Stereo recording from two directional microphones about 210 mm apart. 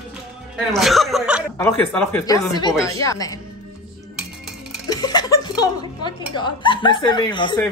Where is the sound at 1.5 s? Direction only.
10° left (ahead or behind).